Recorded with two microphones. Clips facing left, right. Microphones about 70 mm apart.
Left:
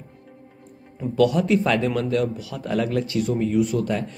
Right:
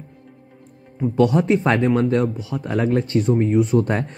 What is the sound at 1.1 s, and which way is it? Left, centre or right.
Speech, right.